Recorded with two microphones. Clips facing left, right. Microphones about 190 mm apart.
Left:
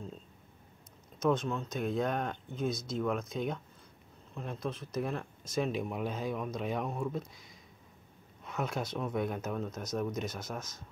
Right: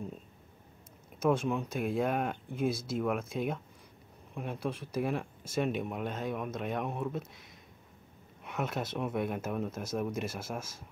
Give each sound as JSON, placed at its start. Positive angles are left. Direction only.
{"t": 1.2, "sound": "speech", "side_deg": -10}